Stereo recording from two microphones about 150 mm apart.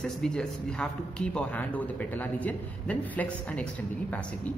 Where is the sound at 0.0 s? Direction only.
5° left (ahead or behind).